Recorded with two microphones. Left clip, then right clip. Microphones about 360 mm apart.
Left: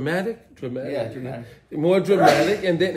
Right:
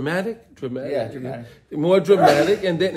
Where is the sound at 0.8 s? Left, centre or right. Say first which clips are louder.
Right 3 dB; right.